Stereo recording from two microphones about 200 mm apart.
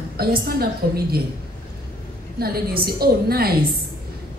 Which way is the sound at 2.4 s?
50° right (ahead or behind).